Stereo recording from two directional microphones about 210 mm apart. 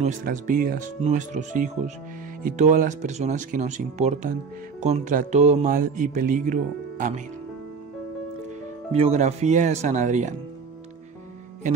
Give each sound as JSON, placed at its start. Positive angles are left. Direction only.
{"t": 0.0, "sound": "speech", "side_deg": -35}
{"t": 8.9, "sound": "speech", "side_deg": -30}